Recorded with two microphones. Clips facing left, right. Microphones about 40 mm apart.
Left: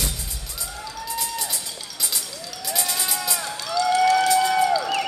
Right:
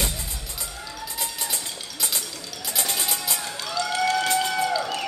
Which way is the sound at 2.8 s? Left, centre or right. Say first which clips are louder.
Even; right.